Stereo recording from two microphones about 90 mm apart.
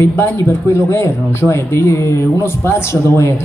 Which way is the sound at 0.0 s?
25° left (ahead or behind).